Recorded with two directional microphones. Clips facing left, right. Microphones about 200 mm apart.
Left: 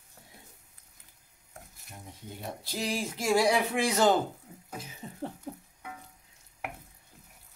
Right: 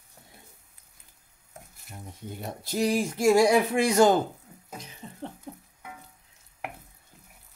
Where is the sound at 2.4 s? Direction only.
50° right (ahead or behind).